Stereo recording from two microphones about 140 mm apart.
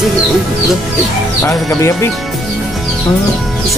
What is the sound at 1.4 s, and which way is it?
Speech, 20° left (ahead or behind).